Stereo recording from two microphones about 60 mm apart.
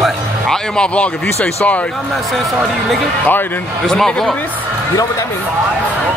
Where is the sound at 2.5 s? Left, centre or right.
Centre.